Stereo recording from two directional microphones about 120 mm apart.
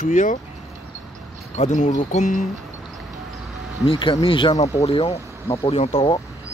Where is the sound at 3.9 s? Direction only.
45° left (ahead or behind).